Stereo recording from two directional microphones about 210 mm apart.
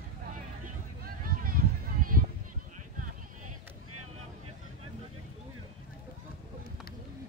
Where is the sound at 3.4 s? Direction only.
90° right.